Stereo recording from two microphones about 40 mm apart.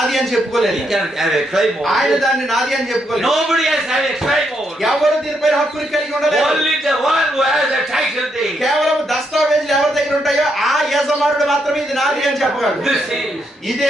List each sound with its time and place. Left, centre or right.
0.0 s a man's voice: centre